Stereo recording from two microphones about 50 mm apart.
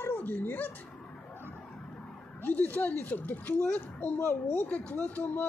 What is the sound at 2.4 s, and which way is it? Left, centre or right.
Speech, left.